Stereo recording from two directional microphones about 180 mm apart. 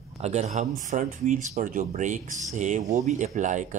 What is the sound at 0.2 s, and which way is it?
Speech, 40° right (ahead or behind).